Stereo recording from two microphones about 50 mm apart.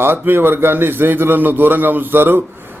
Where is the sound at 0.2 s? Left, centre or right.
Right.